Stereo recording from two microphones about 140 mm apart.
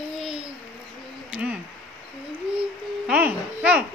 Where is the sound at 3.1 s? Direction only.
10° right (ahead or behind).